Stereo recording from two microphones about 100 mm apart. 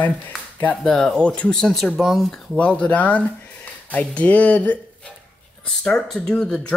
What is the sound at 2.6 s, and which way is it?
Speech, 10° left (ahead or behind).